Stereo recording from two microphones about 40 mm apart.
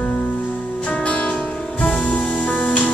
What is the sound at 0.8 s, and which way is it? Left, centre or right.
Music, left.